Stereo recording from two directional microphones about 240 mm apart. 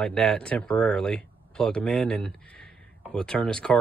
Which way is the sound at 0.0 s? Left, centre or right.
Centre.